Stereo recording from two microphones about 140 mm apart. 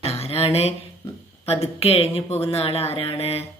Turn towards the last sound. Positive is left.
turn(degrees=50)  # may be behind; listen again after turning